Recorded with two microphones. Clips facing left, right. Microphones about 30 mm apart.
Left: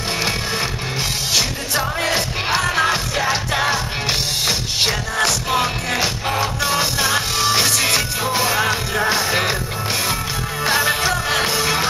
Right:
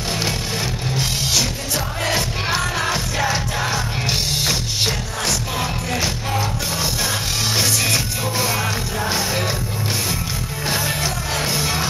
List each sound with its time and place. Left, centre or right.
1.3 s music: left
2.0 s music: left
4.7 s music: left
10.6 s music: left